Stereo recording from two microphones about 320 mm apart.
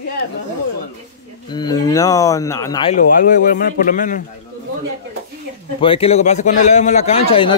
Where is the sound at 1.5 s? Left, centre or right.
Centre.